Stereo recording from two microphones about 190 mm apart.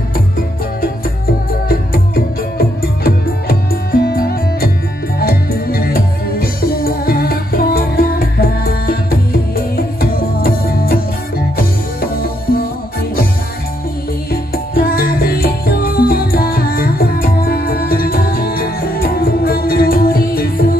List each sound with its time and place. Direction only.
2.8 s music: 55° left (ahead or behind)
14.3 s music: 55° left (ahead or behind)